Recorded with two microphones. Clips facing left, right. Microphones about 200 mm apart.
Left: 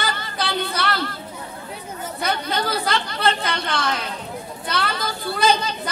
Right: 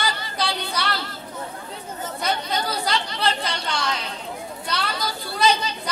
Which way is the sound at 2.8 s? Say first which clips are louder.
Left 2 dB; 55° left (ahead or behind).